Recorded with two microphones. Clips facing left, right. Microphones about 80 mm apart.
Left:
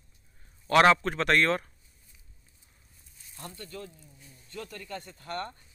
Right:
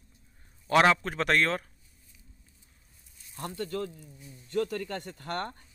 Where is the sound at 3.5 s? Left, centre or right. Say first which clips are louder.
Right 11 dB; right.